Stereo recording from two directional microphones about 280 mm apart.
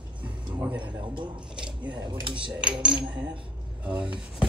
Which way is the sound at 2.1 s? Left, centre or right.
Centre.